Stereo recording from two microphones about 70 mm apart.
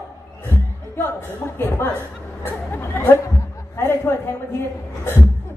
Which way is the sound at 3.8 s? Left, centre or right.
Left.